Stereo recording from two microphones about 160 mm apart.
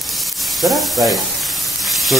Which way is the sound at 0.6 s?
Centre (ahead or behind).